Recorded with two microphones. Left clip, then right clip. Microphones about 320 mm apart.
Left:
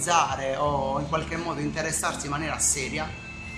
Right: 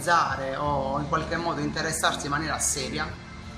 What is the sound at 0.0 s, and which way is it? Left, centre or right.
Music, centre.